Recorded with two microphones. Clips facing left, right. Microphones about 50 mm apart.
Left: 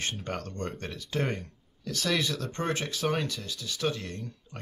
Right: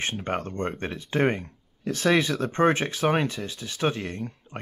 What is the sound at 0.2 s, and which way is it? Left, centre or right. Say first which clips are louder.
Speech: right 6 dB; right.